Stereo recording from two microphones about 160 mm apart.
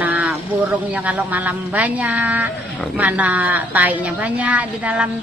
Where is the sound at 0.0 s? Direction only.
10° right (ahead or behind).